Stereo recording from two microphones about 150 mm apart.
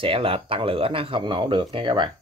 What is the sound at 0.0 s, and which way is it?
Speech, 35° right (ahead or behind).